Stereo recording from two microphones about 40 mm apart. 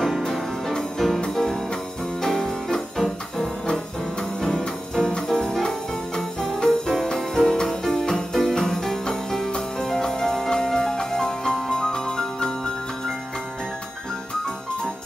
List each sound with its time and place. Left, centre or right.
0.9 s music: centre